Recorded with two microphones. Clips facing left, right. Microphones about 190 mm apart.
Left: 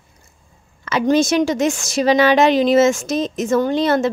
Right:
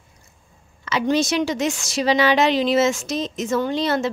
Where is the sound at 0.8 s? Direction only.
50° left (ahead or behind).